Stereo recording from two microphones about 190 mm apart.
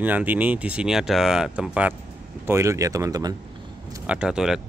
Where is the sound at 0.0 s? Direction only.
10° right (ahead or behind).